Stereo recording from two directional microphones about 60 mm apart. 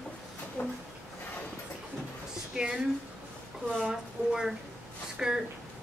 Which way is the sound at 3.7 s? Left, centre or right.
Centre.